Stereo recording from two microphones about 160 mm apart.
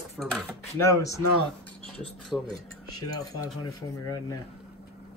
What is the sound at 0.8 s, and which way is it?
Speech, 20° left (ahead or behind).